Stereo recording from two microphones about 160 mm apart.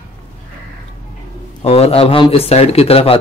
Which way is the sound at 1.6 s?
40° left (ahead or behind).